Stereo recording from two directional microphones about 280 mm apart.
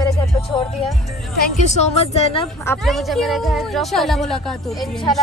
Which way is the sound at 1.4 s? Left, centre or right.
Left.